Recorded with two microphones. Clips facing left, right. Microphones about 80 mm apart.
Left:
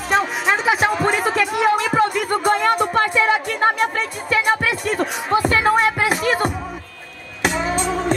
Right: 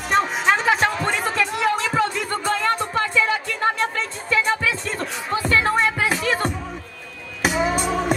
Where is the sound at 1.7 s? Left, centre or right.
Centre.